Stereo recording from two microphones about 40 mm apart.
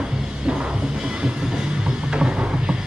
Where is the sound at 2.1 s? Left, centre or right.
Right.